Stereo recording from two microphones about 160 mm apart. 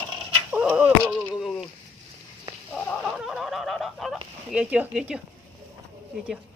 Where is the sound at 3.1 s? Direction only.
Centre (ahead or behind).